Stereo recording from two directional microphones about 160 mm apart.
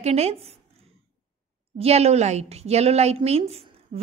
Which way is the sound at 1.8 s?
40° right (ahead or behind).